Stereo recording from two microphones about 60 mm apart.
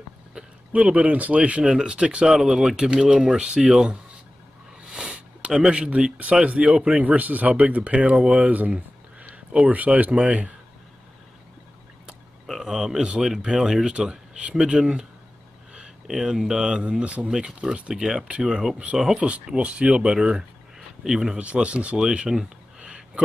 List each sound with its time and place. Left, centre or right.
0.3 s speech: centre
4.8 s a sound: centre
6.3 s speech: centre
12.4 s a sound: centre
13.0 s speech: centre
16.1 s speech: centre
17.0 s speech: right
19.4 s speech: centre